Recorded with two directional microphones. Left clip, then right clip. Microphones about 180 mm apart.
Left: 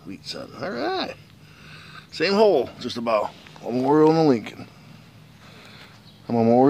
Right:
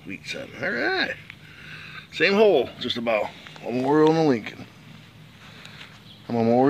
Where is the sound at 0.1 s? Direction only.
5° left (ahead or behind).